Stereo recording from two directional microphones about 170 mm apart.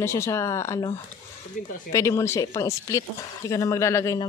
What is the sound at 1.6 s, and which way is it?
Speech, 50° left (ahead or behind).